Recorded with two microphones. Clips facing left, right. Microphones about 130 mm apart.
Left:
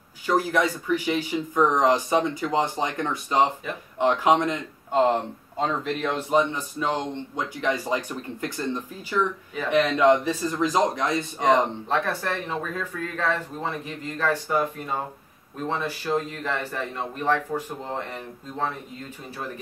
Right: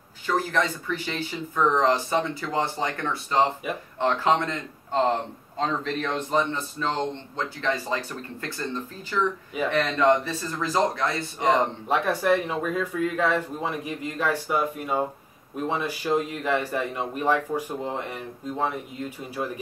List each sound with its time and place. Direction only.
0.3 s speech: 10° left (ahead or behind)
11.9 s speech: 10° right (ahead or behind)